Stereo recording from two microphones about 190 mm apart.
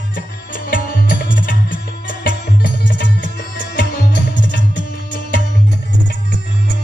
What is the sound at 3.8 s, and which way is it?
Tabla, 60° left (ahead or behind).